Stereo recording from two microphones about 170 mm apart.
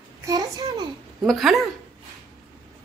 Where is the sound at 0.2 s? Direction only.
20° right (ahead or behind).